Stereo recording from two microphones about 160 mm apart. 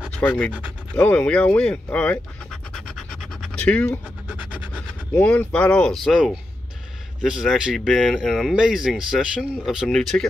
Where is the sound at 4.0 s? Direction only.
5° right (ahead or behind).